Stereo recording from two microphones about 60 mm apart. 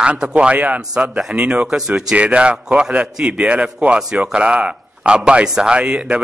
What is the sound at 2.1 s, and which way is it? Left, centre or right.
A man's voice, right.